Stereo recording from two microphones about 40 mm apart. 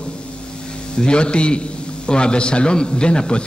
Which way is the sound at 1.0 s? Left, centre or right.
Left.